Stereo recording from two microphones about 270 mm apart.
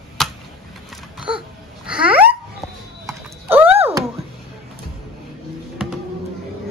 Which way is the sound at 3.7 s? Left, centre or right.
Right.